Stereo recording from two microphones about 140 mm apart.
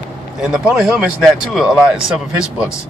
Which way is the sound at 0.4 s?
5° right (ahead or behind).